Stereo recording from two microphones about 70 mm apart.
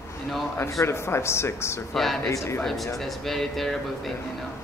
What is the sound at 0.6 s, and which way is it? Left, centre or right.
Speech, left.